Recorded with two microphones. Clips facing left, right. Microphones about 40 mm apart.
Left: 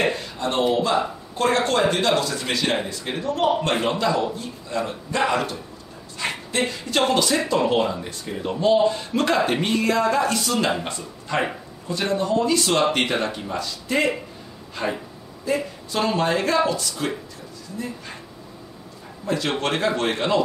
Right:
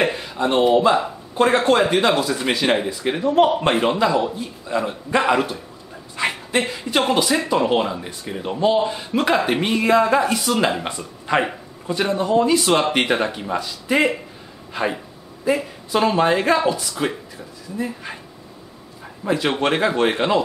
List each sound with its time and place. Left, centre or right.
0.0 s speech: centre
6.1 s dog: right
6.6 s speech: centre
19.2 s speech: centre